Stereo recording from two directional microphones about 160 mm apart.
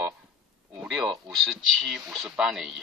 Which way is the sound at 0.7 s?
Centre (ahead or behind).